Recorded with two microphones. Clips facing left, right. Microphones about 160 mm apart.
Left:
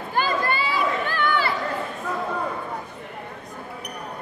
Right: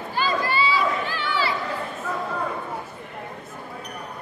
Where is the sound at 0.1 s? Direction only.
55° left (ahead or behind).